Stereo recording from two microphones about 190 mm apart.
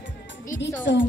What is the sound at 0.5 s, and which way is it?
Music, 70° left (ahead or behind).